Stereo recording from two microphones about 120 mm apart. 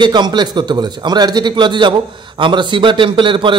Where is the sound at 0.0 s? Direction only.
40° right (ahead or behind).